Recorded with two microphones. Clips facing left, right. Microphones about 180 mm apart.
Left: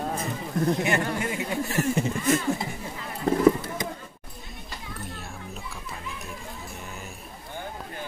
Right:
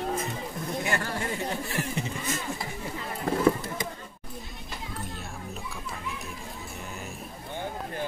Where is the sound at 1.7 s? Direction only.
45° left (ahead or behind).